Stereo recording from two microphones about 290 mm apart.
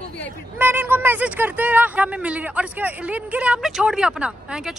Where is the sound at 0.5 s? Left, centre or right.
Centre.